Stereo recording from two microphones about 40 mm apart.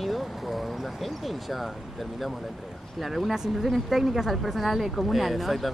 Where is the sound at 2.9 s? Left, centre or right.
Centre.